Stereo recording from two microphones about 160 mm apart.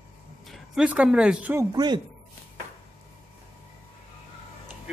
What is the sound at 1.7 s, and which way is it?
Speech, 25° right (ahead or behind).